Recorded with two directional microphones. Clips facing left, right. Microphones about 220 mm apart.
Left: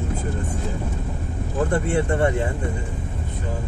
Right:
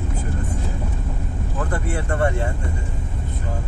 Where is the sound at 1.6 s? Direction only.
25° left (ahead or behind).